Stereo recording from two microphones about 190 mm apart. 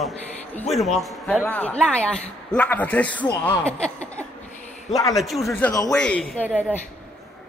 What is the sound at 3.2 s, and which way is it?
Speech, 20° left (ahead or behind).